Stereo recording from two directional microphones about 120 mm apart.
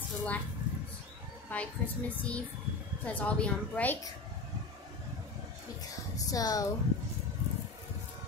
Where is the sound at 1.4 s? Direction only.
15° left (ahead or behind).